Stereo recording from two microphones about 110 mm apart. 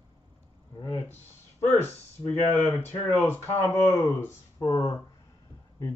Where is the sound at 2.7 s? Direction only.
20° left (ahead or behind).